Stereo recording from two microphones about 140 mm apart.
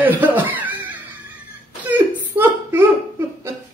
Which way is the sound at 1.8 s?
15° right (ahead or behind).